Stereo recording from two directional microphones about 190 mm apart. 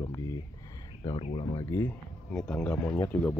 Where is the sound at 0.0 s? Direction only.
15° left (ahead or behind).